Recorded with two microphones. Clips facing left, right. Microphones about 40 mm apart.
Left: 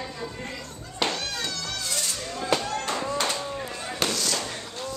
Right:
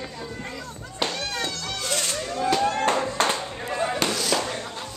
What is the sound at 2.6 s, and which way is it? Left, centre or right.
Fireworks, right.